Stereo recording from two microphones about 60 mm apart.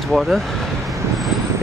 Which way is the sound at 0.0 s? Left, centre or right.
Centre.